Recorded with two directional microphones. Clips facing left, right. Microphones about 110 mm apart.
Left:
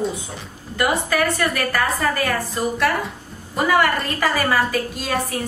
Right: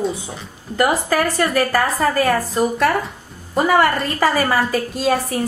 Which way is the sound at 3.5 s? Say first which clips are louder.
Right 3 dB; 35° right (ahead or behind).